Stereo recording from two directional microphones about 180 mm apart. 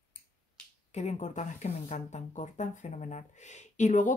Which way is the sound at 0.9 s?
40° left (ahead or behind).